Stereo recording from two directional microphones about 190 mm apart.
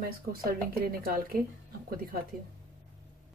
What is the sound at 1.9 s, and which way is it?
Speech, 50° right (ahead or behind).